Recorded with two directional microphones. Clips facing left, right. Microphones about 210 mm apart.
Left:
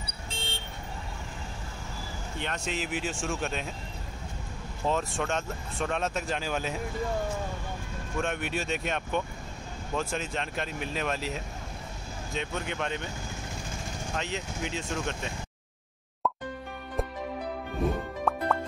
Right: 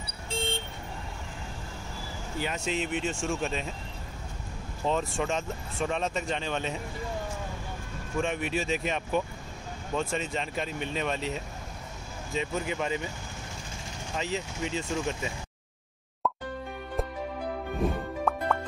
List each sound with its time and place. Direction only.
2.3 s speech: 5° right (ahead or behind)
4.8 s speech: centre (ahead or behind)
8.2 s speech: centre (ahead or behind)
14.1 s speech: centre (ahead or behind)
17.0 s music: centre (ahead or behind)
17.8 s speech: centre (ahead or behind)
18.3 s plop: centre (ahead or behind)